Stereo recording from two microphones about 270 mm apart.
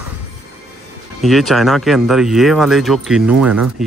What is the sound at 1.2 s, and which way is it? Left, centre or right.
Speech, centre.